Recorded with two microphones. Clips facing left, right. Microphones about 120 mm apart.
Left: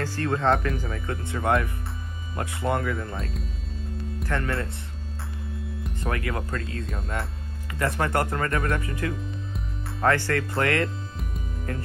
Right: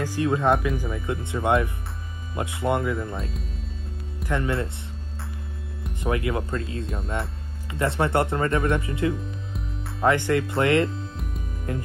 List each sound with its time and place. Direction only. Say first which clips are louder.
0.0 s speech: right 2 dB; 15° right (ahead or behind)
3.2 s speech: even; centre (ahead or behind)
4.3 s speech: right 3 dB; 20° right (ahead or behind)
5.9 s speech: right 4 dB; 20° right (ahead or behind)
9.1 s music: right 1 dB; centre (ahead or behind)
10.0 s speech: right 2 dB; 20° right (ahead or behind)
10.9 s music: right 2 dB; centre (ahead or behind)
11.7 s speech: right 3 dB; 20° right (ahead or behind)